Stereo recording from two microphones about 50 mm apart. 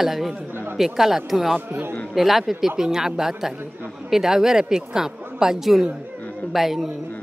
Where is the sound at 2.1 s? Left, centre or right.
Centre.